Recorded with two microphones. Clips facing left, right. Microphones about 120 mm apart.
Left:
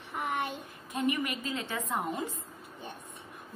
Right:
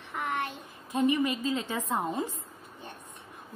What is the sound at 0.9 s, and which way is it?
A woman's voice, 25° right (ahead or behind).